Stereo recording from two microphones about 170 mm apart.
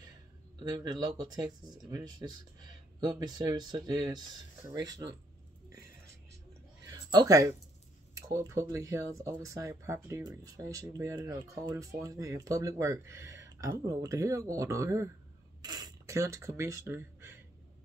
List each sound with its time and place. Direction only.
0.6 s speech: 25° right (ahead or behind)
7.1 s speech: 20° right (ahead or behind)